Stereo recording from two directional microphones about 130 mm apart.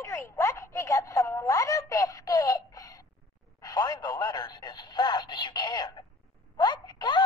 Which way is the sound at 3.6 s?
30° left (ahead or behind).